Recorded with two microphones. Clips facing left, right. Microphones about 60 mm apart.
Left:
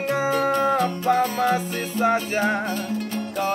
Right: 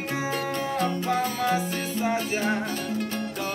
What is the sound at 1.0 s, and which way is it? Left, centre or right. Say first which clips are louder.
Music: left 5 dB; left.